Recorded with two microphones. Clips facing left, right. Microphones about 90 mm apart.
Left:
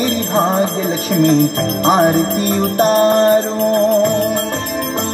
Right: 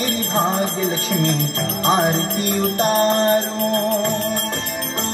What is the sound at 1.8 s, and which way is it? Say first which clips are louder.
Music: left 5 dB; 15° left (ahead or behind).